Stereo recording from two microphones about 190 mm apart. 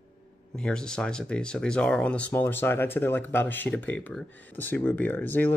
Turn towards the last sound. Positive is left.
turn(degrees=10)  # may be behind; listen again after turning